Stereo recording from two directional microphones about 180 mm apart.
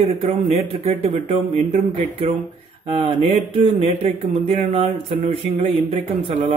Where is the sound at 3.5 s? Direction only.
35° right (ahead or behind).